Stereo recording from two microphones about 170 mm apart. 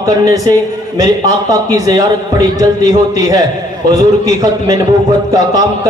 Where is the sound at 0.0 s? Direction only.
20° right (ahead or behind).